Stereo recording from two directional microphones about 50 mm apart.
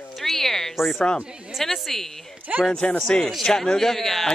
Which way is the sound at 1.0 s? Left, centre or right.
Centre.